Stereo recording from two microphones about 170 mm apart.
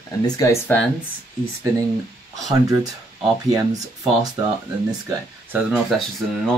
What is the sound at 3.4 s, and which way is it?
Speech, 20° right (ahead or behind).